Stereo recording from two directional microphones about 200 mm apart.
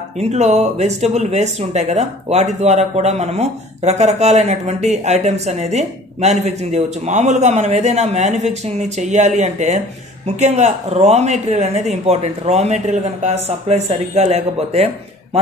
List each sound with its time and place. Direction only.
0.2 s speech: 35° right (ahead or behind)